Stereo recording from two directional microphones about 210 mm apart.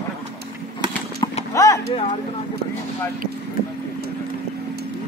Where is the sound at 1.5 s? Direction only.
15° left (ahead or behind).